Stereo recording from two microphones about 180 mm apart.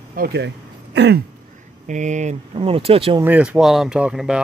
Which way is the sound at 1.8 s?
40° right (ahead or behind).